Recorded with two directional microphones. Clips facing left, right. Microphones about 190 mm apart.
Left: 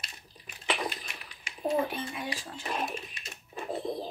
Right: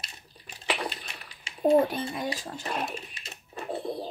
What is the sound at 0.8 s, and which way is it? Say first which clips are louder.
Bathtub: even; 30° right (ahead or behind).